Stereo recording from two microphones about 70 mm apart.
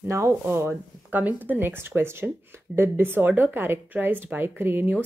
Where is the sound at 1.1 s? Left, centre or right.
Right.